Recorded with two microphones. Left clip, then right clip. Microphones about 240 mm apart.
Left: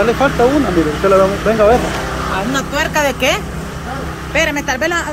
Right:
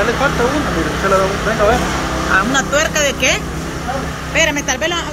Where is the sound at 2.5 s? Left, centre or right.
Centre.